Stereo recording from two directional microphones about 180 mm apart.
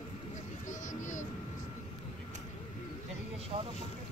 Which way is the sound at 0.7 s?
45° left (ahead or behind).